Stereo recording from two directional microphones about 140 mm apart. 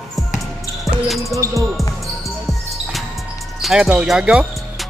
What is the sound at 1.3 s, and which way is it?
Basketball bounce, 20° right (ahead or behind).